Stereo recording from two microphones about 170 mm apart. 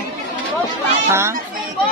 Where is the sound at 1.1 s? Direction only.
15° right (ahead or behind).